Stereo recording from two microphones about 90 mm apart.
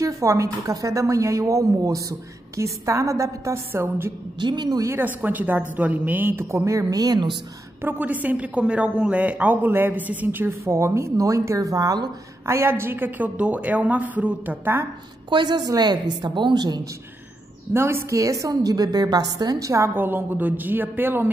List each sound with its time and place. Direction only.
0.0 s a woman's voice: 35° right (ahead or behind)
4.4 s speech: 55° right (ahead or behind)
4.8 s a woman's voice: 20° right (ahead or behind); by 7.3 s 50° right (ahead or behind)
7.8 s a woman's voice: 20° right (ahead or behind); by 12.1 s 45° right (ahead or behind)
12.4 s a woman's voice: 30° right (ahead or behind)
15.2 s a woman's voice: 55° right (ahead or behind)
17.7 s a woman's voice: 30° right (ahead or behind)
20.0 s a woman's voice: 20° right (ahead or behind)